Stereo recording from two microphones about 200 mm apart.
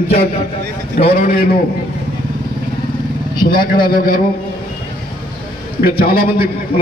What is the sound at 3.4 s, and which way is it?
Speech, 45° left (ahead or behind).